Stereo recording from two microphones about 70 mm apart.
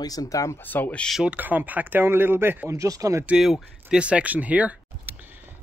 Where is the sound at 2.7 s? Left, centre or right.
Right.